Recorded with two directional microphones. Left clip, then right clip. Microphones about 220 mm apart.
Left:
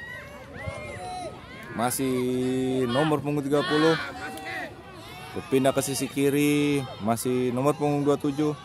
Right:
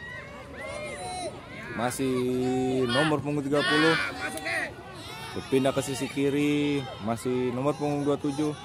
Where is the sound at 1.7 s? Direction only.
20° left (ahead or behind).